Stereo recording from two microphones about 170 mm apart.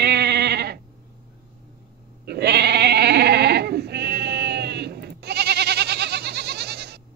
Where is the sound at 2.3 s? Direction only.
80° right.